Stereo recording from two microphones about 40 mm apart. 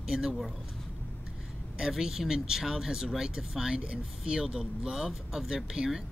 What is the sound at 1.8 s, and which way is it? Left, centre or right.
Speech, centre.